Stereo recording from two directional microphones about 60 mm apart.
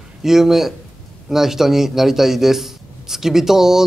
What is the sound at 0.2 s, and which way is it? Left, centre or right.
Speech, centre.